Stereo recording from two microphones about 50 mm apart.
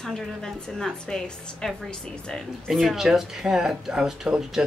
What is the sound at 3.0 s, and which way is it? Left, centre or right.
Speech, centre.